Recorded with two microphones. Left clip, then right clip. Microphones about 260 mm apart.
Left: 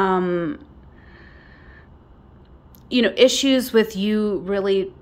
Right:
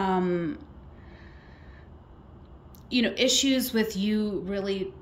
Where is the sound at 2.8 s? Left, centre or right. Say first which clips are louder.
Left 9 dB; centre.